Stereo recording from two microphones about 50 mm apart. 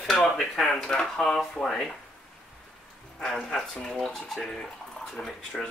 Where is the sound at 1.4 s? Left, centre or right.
Centre.